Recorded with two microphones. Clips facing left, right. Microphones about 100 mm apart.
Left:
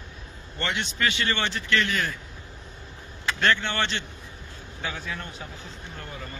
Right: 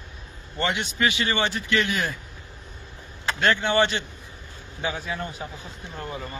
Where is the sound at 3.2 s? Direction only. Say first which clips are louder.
Right 2 dB; 5° right (ahead or behind).